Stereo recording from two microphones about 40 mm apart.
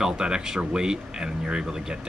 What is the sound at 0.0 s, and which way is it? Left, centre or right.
Speech, centre.